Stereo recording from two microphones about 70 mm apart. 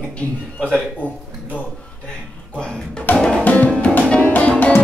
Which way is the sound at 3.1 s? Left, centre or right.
Left.